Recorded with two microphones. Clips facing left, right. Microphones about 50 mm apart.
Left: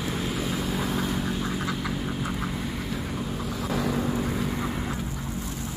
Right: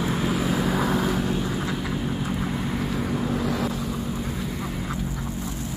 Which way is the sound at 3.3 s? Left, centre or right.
Right.